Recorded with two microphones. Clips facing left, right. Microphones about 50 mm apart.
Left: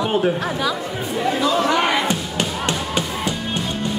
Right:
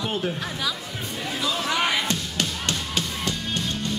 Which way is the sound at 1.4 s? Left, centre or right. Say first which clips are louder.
Left 5 dB; centre.